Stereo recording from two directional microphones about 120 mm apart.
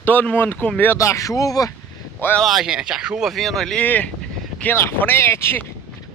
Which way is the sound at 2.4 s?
Centre (ahead or behind).